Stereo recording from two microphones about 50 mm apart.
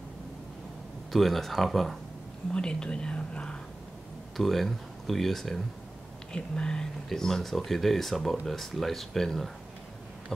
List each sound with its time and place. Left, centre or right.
1.1 s speech: centre
2.5 s speech: centre
4.4 s speech: centre
6.3 s speech: centre